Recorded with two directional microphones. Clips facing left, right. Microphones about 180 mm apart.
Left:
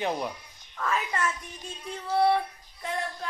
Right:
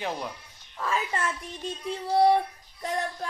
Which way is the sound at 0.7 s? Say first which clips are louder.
Even; 25° right (ahead or behind).